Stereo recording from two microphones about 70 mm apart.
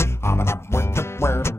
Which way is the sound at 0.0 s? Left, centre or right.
Left.